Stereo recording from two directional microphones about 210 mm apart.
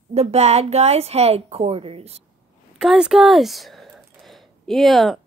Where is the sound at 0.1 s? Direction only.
30° right (ahead or behind).